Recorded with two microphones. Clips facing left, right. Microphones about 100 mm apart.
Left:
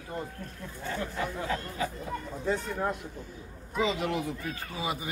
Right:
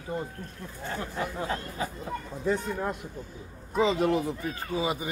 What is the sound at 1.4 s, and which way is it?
Speech, 30° right (ahead or behind).